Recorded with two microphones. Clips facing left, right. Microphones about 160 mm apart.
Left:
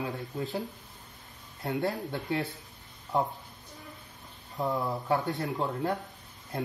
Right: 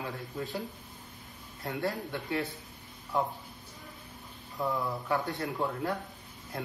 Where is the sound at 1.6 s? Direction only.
20° left (ahead or behind).